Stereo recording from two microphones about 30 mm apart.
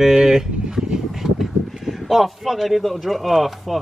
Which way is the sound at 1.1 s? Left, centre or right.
Centre.